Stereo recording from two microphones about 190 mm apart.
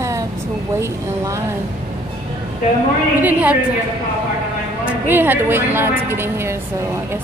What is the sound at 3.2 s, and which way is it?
Speech, 10° right (ahead or behind).